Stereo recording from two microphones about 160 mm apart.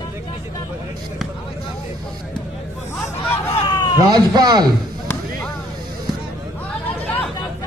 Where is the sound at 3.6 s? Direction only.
25° left (ahead or behind).